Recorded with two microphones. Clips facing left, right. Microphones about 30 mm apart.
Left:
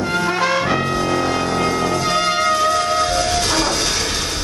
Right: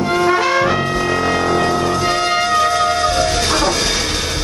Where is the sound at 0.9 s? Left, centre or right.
Centre.